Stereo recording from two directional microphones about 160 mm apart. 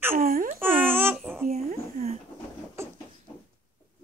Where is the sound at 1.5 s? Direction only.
45° right (ahead or behind).